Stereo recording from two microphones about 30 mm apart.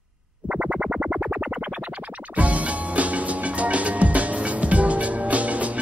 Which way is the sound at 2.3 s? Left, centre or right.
Right.